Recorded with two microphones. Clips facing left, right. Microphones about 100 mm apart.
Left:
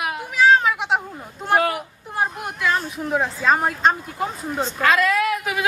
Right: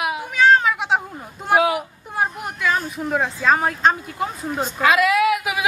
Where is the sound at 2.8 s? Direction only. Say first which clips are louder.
Even; centre (ahead or behind).